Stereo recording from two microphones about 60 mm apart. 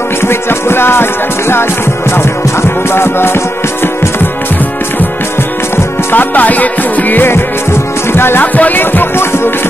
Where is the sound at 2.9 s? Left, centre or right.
Left.